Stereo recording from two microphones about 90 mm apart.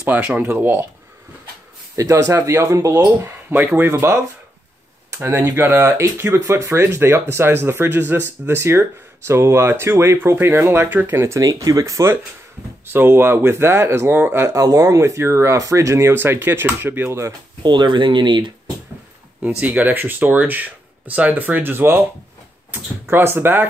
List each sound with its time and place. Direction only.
0.0 s speech: 15° right (ahead or behind)
2.0 s speech: 35° right (ahead or behind)
5.2 s speech: 35° right (ahead or behind)
17.6 s speech: 60° right (ahead or behind)
19.6 s speech: 20° right (ahead or behind)